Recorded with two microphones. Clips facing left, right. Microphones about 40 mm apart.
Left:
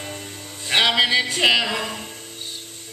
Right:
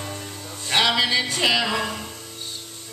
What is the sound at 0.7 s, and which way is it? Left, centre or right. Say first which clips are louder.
Music: left 2 dB; left.